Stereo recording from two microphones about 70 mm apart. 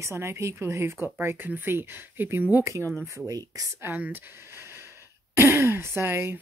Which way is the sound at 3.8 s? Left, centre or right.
Right.